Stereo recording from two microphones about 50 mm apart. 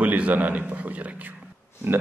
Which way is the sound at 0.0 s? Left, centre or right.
Right.